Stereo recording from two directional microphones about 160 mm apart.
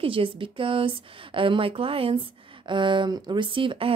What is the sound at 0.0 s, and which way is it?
Speech, 35° right (ahead or behind).